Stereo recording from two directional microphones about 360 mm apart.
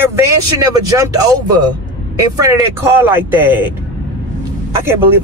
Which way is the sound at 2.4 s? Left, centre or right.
Centre.